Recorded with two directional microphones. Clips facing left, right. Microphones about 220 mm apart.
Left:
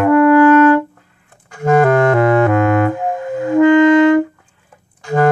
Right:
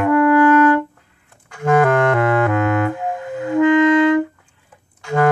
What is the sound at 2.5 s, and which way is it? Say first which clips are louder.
Clarinet: left 4 dB; 45° left (ahead or behind).